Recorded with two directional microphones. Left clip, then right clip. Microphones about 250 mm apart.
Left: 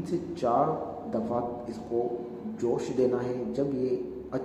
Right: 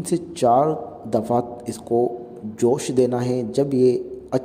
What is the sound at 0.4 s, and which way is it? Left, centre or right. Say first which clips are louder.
Speech: right 9 dB; right.